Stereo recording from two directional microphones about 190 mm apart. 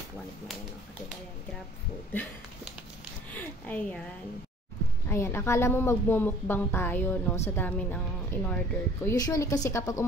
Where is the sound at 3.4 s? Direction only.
10° left (ahead or behind).